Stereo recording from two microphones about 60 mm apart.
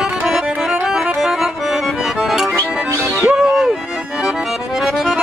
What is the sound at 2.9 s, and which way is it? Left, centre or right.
Music, right.